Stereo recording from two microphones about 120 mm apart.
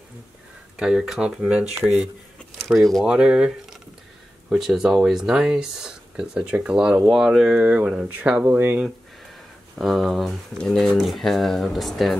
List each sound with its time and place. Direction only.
0.7 s speech: 5° right (ahead or behind)
1.8 s speech: 15° right (ahead or behind)
2.7 s speech: centre (ahead or behind); by 8.8 s 20° right (ahead or behind)
9.8 s speech: centre (ahead or behind)